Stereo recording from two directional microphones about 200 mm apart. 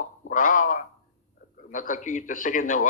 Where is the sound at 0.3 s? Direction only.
40° left (ahead or behind).